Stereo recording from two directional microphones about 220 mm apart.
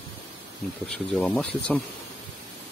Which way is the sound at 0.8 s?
5° left (ahead or behind).